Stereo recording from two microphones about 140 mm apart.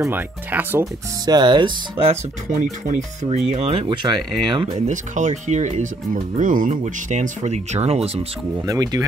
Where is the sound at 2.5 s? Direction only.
65° right (ahead or behind).